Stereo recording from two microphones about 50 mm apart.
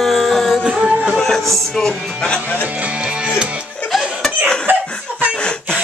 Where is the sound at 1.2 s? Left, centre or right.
Centre.